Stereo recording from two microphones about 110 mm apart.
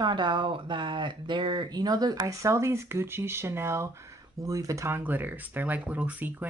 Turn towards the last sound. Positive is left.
turn(degrees=-15)  # may be behind; listen again after turning